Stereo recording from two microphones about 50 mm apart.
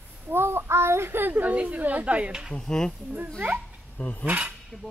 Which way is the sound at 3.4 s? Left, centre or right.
Right.